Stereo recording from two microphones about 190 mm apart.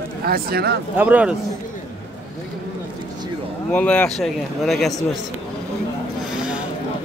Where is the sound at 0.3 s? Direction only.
55° right (ahead or behind).